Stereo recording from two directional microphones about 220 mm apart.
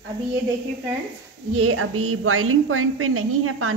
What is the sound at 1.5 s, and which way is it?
A woman's voice, 70° right (ahead or behind).